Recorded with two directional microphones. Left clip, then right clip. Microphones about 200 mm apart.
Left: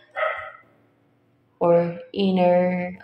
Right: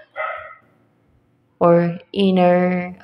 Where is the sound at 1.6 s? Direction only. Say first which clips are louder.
Right 4 dB; 25° right (ahead or behind).